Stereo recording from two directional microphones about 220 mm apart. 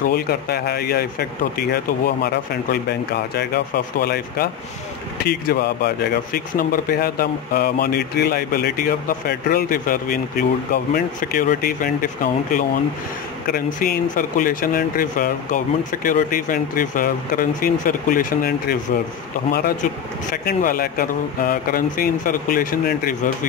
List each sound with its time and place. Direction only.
0.0 s speech: 45° left (ahead or behind)